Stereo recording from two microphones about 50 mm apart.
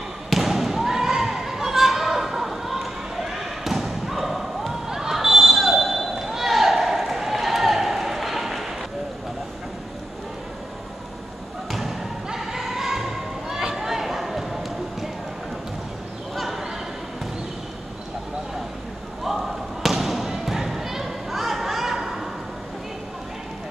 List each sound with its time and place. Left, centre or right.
0.3 s basketball bounce: centre
11.7 s thump: centre
16.3 s a sound: centre
19.2 s basketball bounce: centre